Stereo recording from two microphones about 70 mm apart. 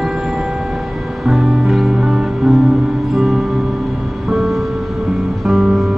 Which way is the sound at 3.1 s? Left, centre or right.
Centre.